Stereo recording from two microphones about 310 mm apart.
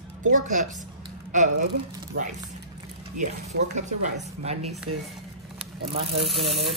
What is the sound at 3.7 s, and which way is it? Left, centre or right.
Speech, right.